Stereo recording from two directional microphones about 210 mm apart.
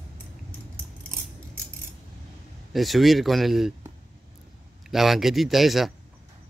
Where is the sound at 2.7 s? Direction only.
Centre (ahead or behind).